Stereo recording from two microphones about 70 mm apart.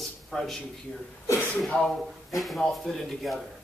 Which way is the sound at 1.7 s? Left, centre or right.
Centre.